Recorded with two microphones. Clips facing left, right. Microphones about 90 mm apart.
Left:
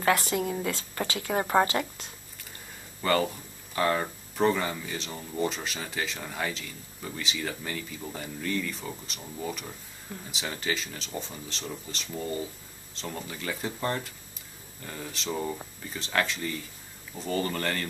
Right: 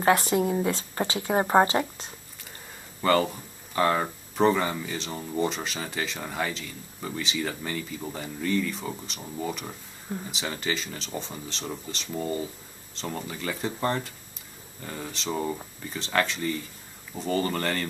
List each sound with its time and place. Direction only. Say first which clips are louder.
0.0 s speech: right 4 dB; 30° right (ahead or behind)
3.0 s speech: right 3 dB; centre (ahead or behind)